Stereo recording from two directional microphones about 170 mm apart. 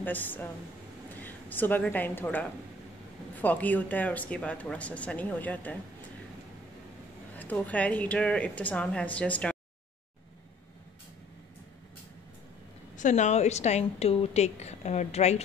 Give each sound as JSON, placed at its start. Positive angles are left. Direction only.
{"t": 0.0, "sound": "a woman's voice", "side_deg": 10}
{"t": 7.3, "sound": "speech", "side_deg": 10}
{"t": 12.9, "sound": "a woman's voice", "side_deg": 45}